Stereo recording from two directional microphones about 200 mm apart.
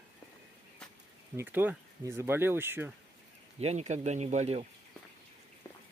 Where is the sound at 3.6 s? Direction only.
35° right (ahead or behind).